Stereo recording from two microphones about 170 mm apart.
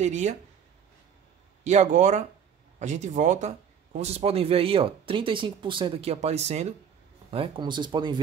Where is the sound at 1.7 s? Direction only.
45° right (ahead or behind).